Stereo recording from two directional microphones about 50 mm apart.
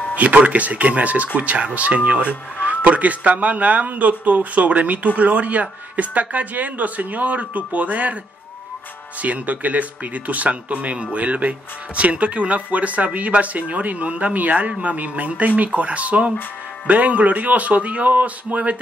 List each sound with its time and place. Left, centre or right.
0.1 s speech: right
9.2 s speech: right